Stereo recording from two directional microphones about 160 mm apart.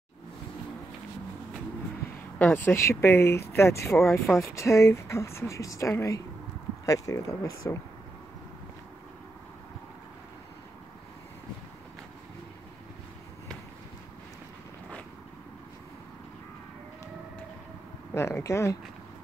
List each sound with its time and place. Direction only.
2.3 s speech: 10° left (ahead or behind)
18.1 s speech: 15° left (ahead or behind)